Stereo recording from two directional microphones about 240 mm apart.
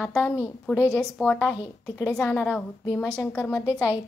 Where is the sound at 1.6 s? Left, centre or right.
Centre.